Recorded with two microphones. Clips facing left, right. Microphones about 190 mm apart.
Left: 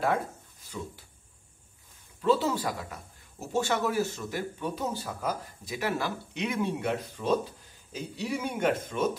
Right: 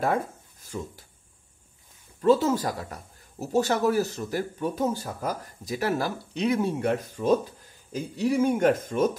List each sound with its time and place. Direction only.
0.0 s speech: 45° right (ahead or behind)
2.2 s speech: 45° right (ahead or behind)